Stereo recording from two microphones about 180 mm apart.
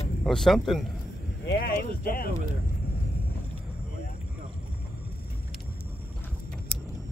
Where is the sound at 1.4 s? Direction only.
60° left (ahead or behind).